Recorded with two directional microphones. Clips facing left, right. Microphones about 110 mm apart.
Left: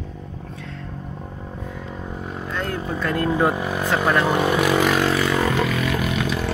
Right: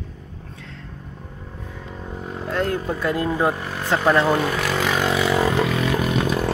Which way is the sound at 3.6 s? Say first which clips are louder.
Left 5 dB; 15° left (ahead or behind).